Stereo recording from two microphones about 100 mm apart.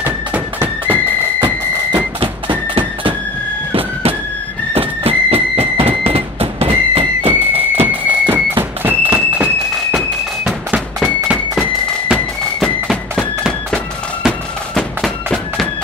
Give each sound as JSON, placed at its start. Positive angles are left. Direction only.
{"t": 0.0, "sound": "music", "side_deg": -15}
{"t": 4.7, "sound": "a sound", "side_deg": -85}
{"t": 7.5, "sound": "thunk", "side_deg": -75}
{"t": 7.9, "sound": "thunk", "side_deg": -20}
{"t": 9.9, "sound": "a sound", "side_deg": -5}
{"t": 11.3, "sound": "music", "side_deg": 10}
{"t": 13.4, "sound": "music", "side_deg": 5}